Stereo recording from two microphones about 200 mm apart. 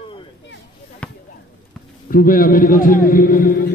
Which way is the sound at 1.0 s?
5° left (ahead or behind).